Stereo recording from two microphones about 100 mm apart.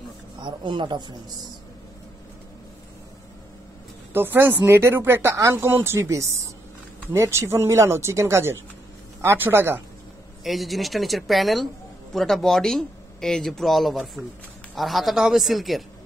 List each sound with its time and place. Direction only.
0.4 s speech: 50° right (ahead or behind)
4.1 s speech: 20° right (ahead or behind)
10.4 s speech: centre (ahead or behind)